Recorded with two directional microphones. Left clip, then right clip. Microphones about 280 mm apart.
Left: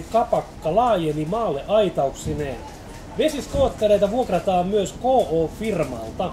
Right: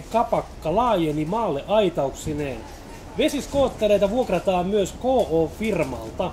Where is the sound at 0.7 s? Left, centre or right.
Centre.